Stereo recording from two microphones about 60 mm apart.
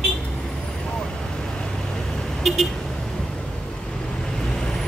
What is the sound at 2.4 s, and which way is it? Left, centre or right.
Vehicle, centre.